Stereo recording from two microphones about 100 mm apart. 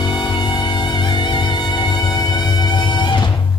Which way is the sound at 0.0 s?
50° left (ahead or behind).